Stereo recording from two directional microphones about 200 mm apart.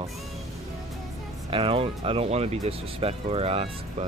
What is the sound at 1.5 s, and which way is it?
Speech, 30° right (ahead or behind).